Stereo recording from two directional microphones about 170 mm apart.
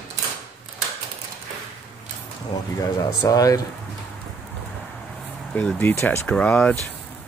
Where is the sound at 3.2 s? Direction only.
20° left (ahead or behind).